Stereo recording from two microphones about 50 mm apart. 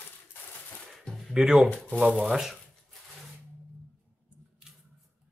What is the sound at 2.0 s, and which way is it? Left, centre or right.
Speech, right.